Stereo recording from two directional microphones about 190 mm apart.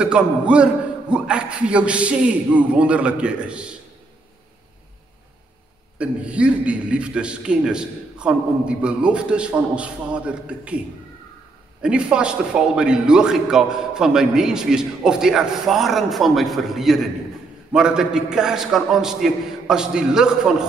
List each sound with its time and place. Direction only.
0.0 s a man's voice: 5° right (ahead or behind)
5.9 s a man's voice: 5° right (ahead or behind)
11.8 s a man's voice: 5° right (ahead or behind)